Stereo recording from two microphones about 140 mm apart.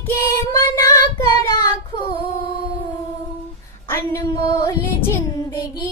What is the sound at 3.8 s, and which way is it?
Child singing, 15° left (ahead or behind).